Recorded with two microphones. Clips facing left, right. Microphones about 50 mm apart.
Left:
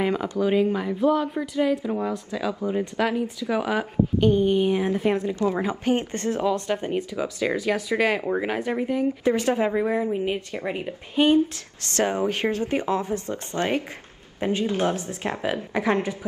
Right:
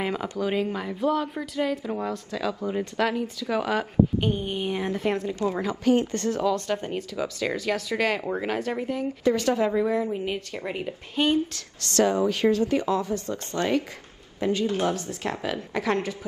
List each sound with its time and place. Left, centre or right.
0.0 s speech: centre
4.2 s speech: centre
5.5 s speech: left
9.2 s speech: left
10.0 s speech: centre
11.8 s speech: left